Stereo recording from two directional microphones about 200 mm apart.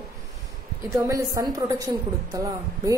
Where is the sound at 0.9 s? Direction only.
15° right (ahead or behind).